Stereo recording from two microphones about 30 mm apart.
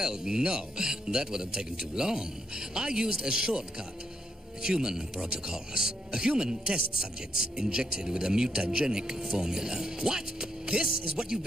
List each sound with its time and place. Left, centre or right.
0.0 s speech: right